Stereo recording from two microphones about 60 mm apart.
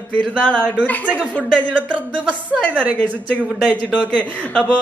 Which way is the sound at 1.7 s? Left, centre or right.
Right.